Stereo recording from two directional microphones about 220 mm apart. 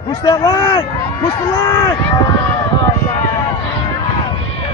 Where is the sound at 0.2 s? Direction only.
20° left (ahead or behind).